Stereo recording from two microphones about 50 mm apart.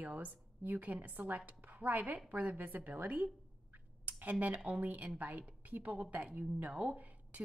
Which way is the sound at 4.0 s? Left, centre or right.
Right.